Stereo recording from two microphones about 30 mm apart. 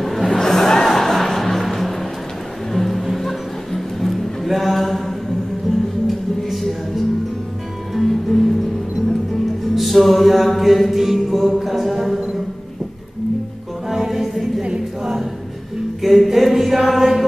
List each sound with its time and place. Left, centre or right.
0.0 s music: centre
0.3 s music: centre
13.8 s music: centre
16.0 s a sound: centre
16.3 s chant: centre